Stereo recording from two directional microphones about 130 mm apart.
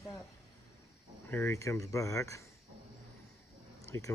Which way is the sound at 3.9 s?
20° left (ahead or behind).